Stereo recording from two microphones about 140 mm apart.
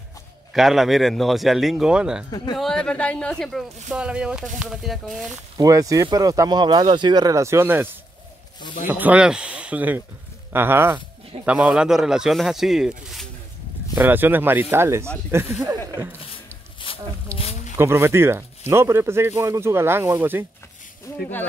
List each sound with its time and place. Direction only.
0.5 s speech: centre (ahead or behind)
5.6 s speech: 25° right (ahead or behind); by 13.3 s centre (ahead or behind)
13.9 s speech: 15° right (ahead or behind)
17.4 s a sound: 50° left (ahead or behind)
17.7 s speech: 15° right (ahead or behind)